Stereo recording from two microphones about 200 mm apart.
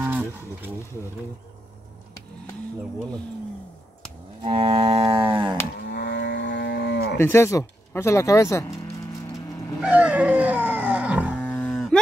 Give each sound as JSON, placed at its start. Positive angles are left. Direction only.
{"t": 0.0, "sound": "a sound", "side_deg": -10}
{"t": 4.4, "sound": "livestock", "side_deg": -25}
{"t": 5.3, "sound": "cattle", "side_deg": -25}
{"t": 5.8, "sound": "livestock", "side_deg": 60}
{"t": 7.2, "sound": "speech", "side_deg": 10}
{"t": 9.8, "sound": "dog", "side_deg": -5}
{"t": 11.7, "sound": "a sound", "side_deg": 0}